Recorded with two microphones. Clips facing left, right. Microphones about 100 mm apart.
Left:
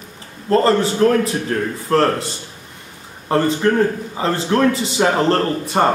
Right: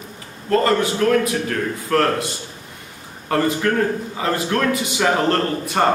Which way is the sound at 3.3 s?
25° left (ahead or behind).